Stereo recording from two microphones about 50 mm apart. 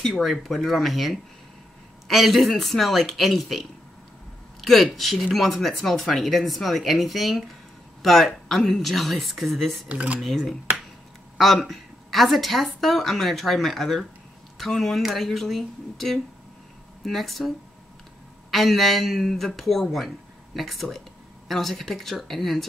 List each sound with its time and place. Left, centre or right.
0.1 s speech: centre
4.6 s a sound: centre
4.9 s speech: centre
9.8 s speech: right
10.2 s speech: centre
18.5 s speech: centre